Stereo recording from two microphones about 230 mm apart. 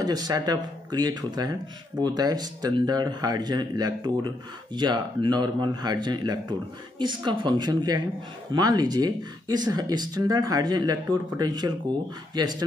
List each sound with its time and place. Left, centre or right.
0.0 s speech: centre